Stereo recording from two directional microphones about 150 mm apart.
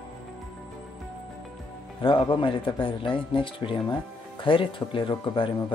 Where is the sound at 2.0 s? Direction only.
35° left (ahead or behind).